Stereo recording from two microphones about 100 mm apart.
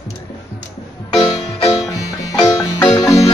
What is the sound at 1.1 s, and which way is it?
Music, 55° left (ahead or behind).